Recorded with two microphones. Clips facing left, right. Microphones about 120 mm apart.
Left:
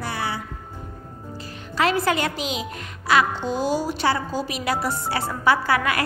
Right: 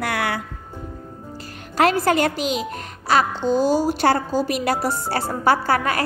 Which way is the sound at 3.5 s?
Centre (ahead or behind).